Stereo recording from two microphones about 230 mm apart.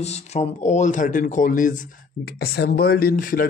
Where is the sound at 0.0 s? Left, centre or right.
Left.